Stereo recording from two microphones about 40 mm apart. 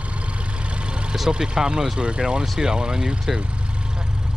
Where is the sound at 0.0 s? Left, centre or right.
Right.